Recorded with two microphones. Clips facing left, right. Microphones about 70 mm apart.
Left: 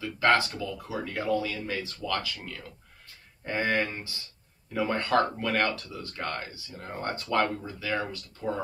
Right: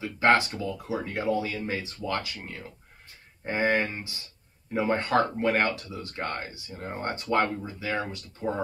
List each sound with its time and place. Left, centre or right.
0.0 s a sound: right
0.6 s speech: right
8.4 s speech: right